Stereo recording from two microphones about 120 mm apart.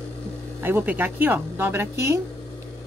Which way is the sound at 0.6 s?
15° right (ahead or behind).